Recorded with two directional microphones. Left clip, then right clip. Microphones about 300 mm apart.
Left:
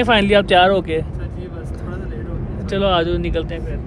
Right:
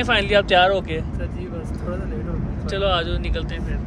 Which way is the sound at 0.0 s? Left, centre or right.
Left.